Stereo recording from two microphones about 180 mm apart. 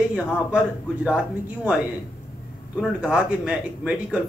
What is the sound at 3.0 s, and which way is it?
Speech, 5° right (ahead or behind).